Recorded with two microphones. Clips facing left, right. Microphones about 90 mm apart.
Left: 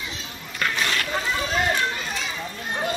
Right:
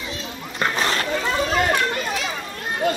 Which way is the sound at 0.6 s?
30° right (ahead or behind).